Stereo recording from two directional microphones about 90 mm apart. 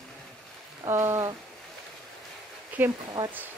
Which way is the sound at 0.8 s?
30° right (ahead or behind).